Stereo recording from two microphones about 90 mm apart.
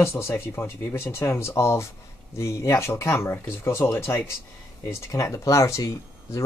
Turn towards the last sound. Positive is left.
turn(degrees=35)  # may be behind; listen again after turning